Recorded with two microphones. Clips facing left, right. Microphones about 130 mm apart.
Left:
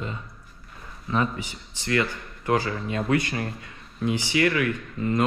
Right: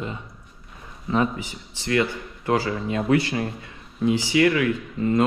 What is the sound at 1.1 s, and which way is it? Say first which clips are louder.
Mantra: right 3 dB; 20° right (ahead or behind).